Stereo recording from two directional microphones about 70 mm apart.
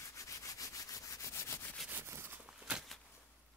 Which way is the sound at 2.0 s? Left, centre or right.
Right.